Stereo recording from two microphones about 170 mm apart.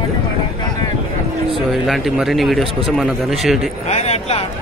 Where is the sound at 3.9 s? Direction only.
40° left (ahead or behind).